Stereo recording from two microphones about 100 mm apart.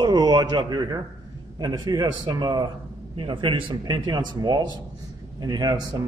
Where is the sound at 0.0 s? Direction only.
40° right (ahead or behind).